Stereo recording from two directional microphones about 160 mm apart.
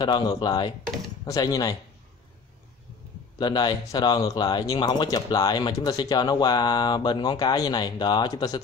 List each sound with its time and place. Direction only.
0.0 s speech: 25° left (ahead or behind)
3.3 s speech: 25° left (ahead or behind)